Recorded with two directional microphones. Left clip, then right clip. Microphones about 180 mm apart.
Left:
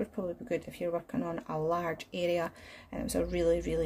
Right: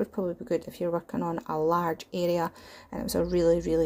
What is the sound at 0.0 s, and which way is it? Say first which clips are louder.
Speech: right 5 dB; 30° right (ahead or behind).